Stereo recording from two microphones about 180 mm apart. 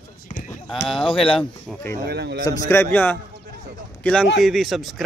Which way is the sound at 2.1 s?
70° right (ahead or behind).